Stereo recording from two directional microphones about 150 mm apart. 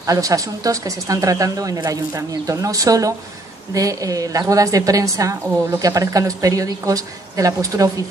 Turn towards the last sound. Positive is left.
turn(degrees=-25)  # may be behind; listen again after turning